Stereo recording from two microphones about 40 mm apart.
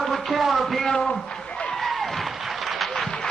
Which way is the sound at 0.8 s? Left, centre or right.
Centre.